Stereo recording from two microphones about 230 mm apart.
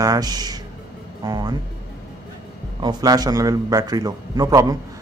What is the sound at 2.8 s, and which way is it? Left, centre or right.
A man's voice, centre.